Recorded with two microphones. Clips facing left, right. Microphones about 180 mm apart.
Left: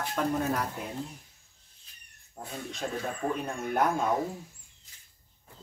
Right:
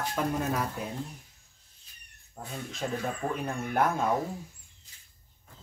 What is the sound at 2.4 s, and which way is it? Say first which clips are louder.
Speech: even; 20° left (ahead or behind).